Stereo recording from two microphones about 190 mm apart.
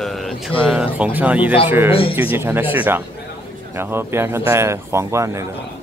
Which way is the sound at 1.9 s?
30° left (ahead or behind).